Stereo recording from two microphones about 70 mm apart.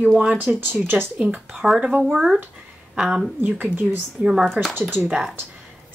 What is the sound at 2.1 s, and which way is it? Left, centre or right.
A woman's voice, centre.